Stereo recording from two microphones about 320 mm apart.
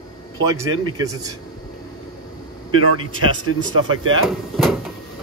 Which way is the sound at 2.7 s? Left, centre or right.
Right.